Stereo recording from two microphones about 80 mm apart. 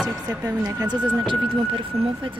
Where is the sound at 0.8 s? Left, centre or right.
Right.